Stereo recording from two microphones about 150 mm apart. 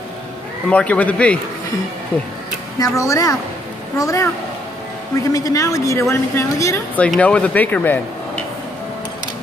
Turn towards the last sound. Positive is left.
turn(degrees=10)  # may be behind; listen again after turning